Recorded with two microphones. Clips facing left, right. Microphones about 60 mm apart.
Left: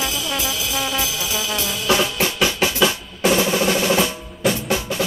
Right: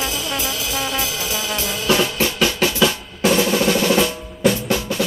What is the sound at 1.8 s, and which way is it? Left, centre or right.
Drum, centre.